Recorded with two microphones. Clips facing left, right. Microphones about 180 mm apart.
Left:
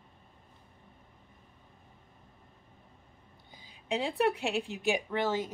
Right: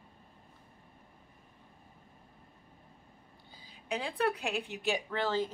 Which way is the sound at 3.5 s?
25° left (ahead or behind).